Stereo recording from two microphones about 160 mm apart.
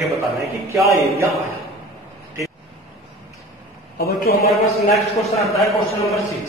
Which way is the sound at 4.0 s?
75° left (ahead or behind).